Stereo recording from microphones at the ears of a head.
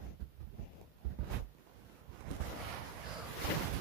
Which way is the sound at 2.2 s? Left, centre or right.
Right.